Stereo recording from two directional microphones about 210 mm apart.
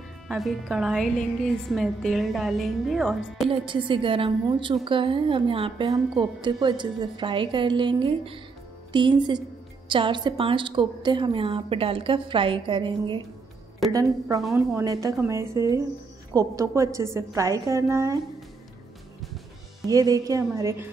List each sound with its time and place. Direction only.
0.3 s a woman's voice: centre (ahead or behind)
3.4 s a woman's voice: 25° right (ahead or behind)
19.9 s a woman's voice: 15° right (ahead or behind)